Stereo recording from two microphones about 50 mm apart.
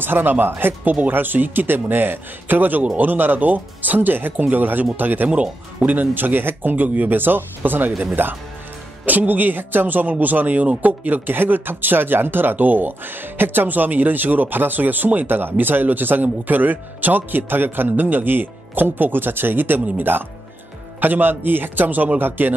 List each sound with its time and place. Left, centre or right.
0.0 s speech: right
5.3 s speech: right
5.9 s speech: right